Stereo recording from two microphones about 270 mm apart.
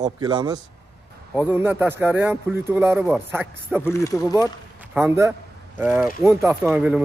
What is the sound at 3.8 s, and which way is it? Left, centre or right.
Speech, centre.